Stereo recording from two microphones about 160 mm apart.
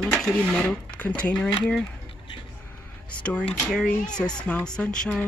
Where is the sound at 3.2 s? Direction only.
5° left (ahead or behind).